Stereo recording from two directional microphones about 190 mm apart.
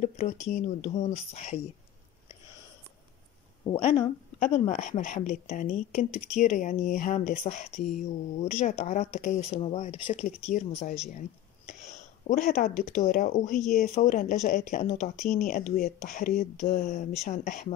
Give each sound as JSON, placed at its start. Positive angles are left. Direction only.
{"t": 0.0, "sound": "speech", "side_deg": 40}
{"t": 3.6, "sound": "speech", "side_deg": 30}
{"t": 11.1, "sound": "a sound", "side_deg": 40}
{"t": 12.3, "sound": "speech", "side_deg": 50}
{"t": 13.6, "sound": "speech", "side_deg": 0}
{"t": 13.8, "sound": "speech", "side_deg": 40}